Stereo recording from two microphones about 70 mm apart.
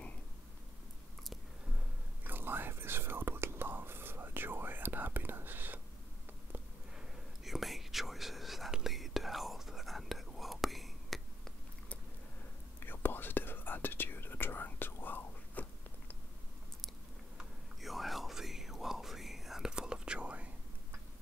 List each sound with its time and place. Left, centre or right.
2.2 s whispering: right
7.0 s whispering: centre
12.8 s whispering: left
17.8 s whispering: centre